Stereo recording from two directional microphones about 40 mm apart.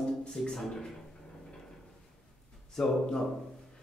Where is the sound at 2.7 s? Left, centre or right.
Centre.